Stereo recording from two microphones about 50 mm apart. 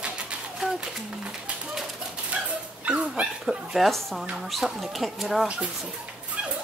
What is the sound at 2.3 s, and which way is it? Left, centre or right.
Dog, right.